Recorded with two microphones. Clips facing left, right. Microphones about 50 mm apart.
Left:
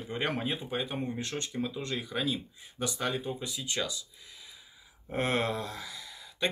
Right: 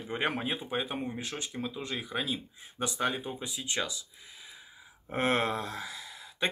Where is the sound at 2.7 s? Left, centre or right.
Right.